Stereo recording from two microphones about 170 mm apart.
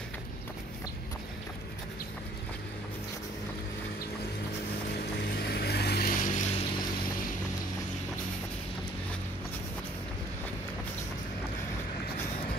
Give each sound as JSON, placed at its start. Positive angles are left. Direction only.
{"t": 4.9, "sound": "vehicle", "side_deg": 70}